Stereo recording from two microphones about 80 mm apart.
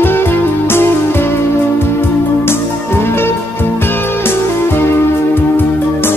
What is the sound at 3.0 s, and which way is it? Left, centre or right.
Music, left.